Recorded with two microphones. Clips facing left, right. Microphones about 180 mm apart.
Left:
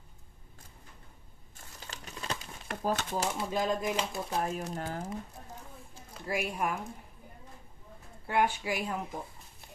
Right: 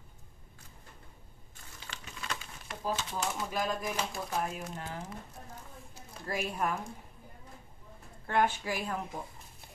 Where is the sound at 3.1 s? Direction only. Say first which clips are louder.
Left 3 dB; 30° left (ahead or behind).